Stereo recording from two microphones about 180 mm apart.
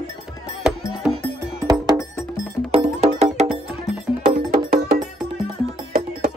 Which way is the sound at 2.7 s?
30° right (ahead or behind).